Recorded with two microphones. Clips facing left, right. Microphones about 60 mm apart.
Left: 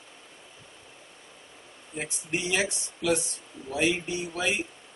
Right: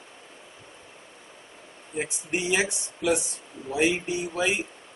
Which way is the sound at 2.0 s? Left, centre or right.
Centre.